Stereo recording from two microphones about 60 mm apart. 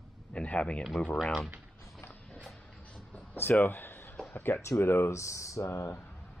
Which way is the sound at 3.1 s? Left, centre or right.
Left.